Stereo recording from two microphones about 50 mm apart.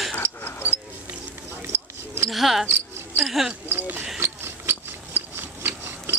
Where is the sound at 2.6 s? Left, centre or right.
Right.